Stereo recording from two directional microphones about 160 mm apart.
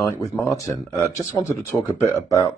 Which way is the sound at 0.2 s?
20° left (ahead or behind).